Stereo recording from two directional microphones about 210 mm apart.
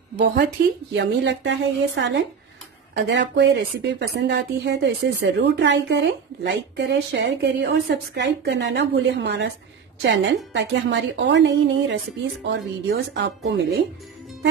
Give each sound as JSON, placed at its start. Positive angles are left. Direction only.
{"t": 0.9, "sound": "speech", "side_deg": -55}